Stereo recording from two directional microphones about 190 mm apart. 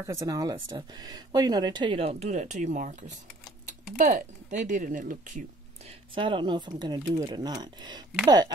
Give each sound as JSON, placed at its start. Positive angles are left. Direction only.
{"t": 0.0, "sound": "speech", "side_deg": -15}
{"t": 6.1, "sound": "speech", "side_deg": -25}